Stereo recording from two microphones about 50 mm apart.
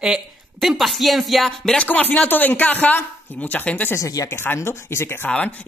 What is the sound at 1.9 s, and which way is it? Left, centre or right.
Speech, left.